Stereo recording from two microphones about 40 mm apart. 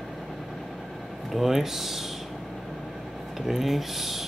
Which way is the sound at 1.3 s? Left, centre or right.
Centre.